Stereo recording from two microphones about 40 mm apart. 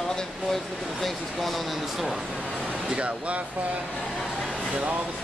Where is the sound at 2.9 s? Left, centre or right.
Right.